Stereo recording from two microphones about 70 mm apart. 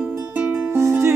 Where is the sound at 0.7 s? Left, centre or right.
Right.